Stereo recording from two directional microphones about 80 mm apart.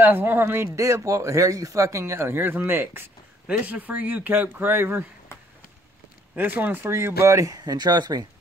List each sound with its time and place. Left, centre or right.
0.0 s speech: right
0.7 s speech: right
6.3 s speech: right